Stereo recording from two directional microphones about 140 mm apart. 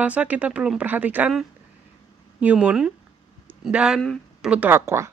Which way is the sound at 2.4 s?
10° right (ahead or behind).